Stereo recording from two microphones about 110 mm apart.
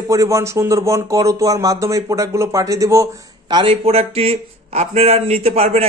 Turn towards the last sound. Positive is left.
turn(degrees=-70)  # may be behind; listen again after turning